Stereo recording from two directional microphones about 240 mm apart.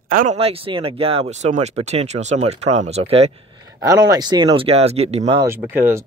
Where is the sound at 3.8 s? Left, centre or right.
Centre.